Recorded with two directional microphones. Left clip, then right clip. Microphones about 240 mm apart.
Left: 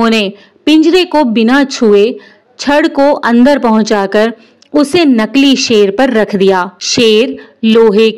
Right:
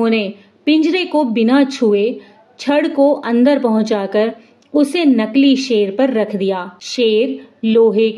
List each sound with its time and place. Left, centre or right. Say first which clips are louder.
0.0 s a woman's voice: left 6 dB; left